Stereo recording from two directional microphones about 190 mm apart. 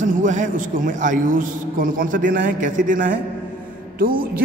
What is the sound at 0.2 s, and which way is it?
A man's voice, 40° right (ahead or behind).